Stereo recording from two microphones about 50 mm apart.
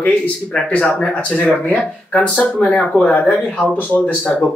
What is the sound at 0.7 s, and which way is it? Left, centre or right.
Speech, left.